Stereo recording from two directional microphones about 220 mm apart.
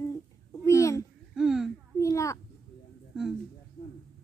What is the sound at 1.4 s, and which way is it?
Speech, 5° right (ahead or behind).